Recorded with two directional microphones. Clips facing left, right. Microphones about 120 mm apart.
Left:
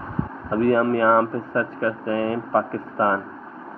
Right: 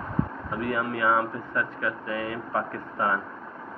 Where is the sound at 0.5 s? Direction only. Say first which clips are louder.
Left 10 dB; 45° left (ahead or behind).